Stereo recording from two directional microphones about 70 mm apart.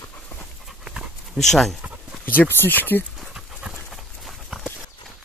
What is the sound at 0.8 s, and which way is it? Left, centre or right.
Dog, centre.